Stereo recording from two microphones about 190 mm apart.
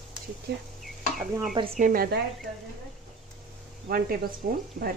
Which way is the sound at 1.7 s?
45° right (ahead or behind).